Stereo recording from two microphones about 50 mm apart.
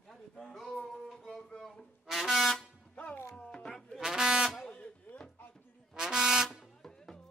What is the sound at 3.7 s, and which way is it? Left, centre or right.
Music, centre.